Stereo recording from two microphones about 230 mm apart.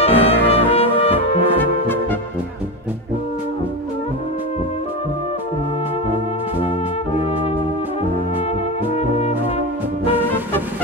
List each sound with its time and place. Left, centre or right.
0.0 s brass instrument: left
8.9 s brass instrument: left